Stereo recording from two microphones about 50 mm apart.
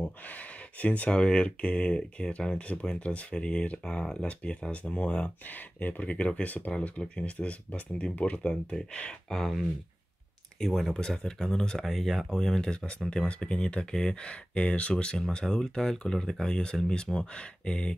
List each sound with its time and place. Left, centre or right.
0.0 s speech: left
5.5 s speech: left
6.8 s speech: left
9.3 s speech: centre
10.6 s speech: centre